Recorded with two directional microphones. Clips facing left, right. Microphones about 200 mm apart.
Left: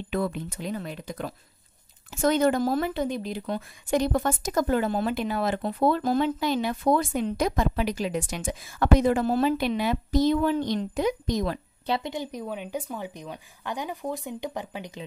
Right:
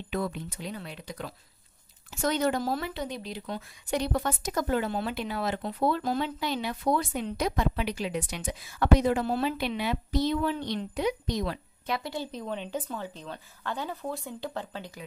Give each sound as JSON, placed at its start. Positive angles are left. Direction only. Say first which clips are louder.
{"t": 0.1, "sound": "speech", "louder": "left 3 dB", "side_deg": 55}
{"t": 11.9, "sound": "speech", "louder": "left 4 dB", "side_deg": 20}